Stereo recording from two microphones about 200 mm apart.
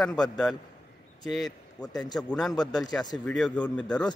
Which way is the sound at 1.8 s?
20° left (ahead or behind).